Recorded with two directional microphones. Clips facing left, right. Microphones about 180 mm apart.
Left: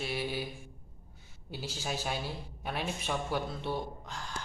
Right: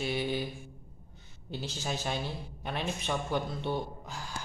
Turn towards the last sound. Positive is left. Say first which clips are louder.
# right 2 dB
turn(degrees=0)  # may be behind; listen again after turning